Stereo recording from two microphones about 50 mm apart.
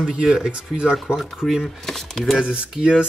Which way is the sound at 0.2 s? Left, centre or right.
Centre.